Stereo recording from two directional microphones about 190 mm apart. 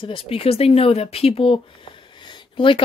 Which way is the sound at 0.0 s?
25° left (ahead or behind).